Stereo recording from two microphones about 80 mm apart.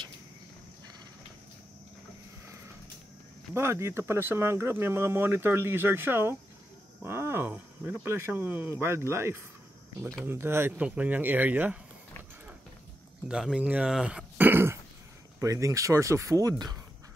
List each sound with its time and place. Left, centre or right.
3.5 s speech: right
10.8 s speech: centre
13.3 s speech: centre
13.6 s speech: centre
14.5 s throat clearing: right
15.4 s speech: right